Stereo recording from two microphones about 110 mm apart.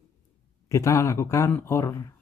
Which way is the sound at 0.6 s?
30° left (ahead or behind).